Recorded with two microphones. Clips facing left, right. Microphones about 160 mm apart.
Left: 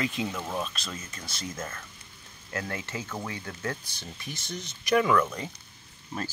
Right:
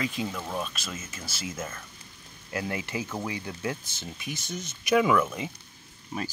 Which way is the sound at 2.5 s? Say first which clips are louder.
Right 3 dB; 15° right (ahead or behind).